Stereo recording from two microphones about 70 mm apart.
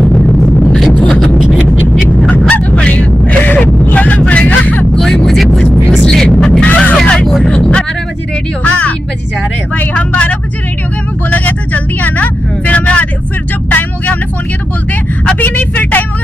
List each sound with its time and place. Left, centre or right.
0.0 s a sound: centre
2.0 s vehicle: centre
4.9 s vehicle: centre
6.7 s a sound: left
7.4 s vehicle: centre
8.6 s music: left
9.8 s vehicle: centre
15.3 s vehicle: left